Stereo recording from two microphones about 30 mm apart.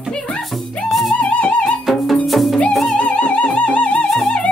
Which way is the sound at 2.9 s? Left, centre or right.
Left.